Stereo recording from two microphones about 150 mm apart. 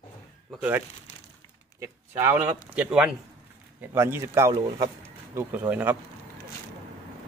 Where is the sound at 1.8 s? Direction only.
15° right (ahead or behind).